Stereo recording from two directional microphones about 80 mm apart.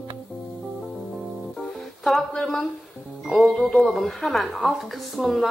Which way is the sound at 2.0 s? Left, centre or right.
Centre.